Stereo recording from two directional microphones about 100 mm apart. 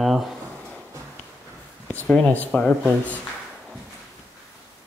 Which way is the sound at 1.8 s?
15° left (ahead or behind).